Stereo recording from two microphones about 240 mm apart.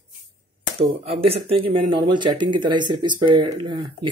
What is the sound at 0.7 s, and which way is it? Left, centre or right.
Speech, right.